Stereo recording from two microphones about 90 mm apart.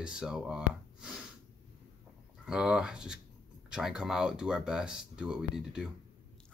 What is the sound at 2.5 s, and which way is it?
Speech, 10° right (ahead or behind).